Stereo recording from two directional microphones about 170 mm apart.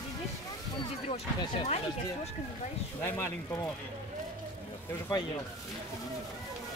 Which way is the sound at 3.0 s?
15° left (ahead or behind).